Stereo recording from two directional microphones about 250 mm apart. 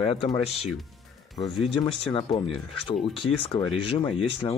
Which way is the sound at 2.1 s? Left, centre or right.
Centre.